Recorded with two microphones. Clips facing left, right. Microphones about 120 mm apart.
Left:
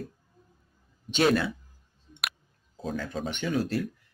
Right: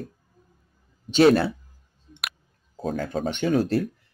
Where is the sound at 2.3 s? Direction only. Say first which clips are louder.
Right 1 dB; 45° right (ahead or behind).